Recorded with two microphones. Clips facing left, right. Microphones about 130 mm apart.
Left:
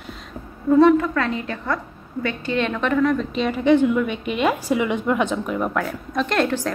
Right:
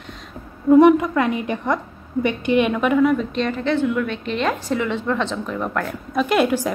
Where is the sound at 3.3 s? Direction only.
10° left (ahead or behind).